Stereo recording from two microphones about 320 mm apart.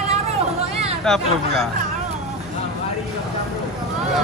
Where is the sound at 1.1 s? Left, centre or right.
Centre.